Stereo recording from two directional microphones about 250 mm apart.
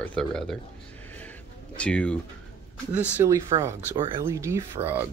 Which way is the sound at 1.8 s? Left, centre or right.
Centre.